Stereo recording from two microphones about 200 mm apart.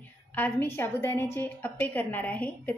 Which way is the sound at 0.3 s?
10° left (ahead or behind).